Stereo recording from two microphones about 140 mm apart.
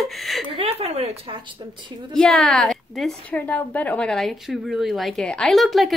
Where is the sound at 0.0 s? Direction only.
Centre (ahead or behind).